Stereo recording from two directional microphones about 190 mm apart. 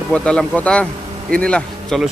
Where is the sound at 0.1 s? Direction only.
5° left (ahead or behind).